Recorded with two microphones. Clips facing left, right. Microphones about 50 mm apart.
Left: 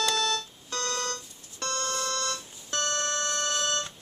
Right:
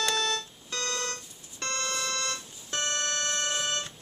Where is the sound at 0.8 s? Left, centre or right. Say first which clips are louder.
Left 1 dB; right.